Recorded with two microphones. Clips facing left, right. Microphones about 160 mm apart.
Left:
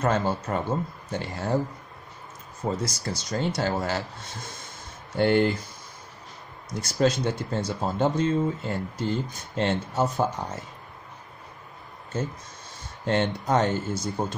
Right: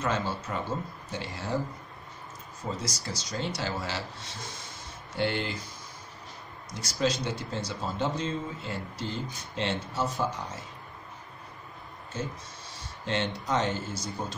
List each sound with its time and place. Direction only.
0.0 s speech: 50° left (ahead or behind)
2.6 s speech: 55° left (ahead or behind)
6.7 s speech: 50° left (ahead or behind)
13.0 s speech: 50° left (ahead or behind)